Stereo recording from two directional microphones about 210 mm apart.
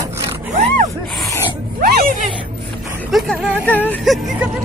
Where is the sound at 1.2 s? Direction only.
10° left (ahead or behind).